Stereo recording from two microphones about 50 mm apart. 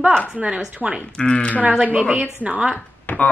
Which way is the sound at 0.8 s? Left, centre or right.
Centre.